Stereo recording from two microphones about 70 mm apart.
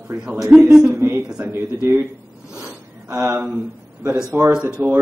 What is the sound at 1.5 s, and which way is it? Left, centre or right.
Speech, right.